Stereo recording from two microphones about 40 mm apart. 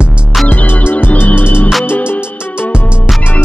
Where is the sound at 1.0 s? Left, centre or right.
Left.